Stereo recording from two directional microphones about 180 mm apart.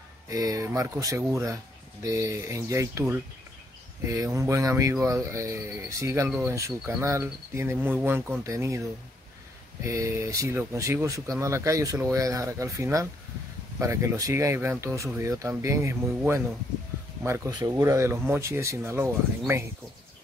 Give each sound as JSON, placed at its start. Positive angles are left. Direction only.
{"t": 0.3, "sound": "speech", "side_deg": -20}
{"t": 9.8, "sound": "speech", "side_deg": -15}